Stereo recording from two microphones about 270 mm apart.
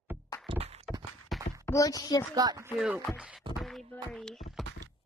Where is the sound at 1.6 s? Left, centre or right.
Centre.